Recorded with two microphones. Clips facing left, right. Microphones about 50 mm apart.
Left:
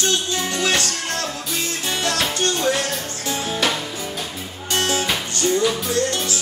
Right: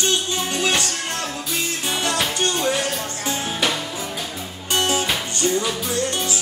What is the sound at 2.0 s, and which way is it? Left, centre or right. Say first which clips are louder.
Music: left 1 dB; centre.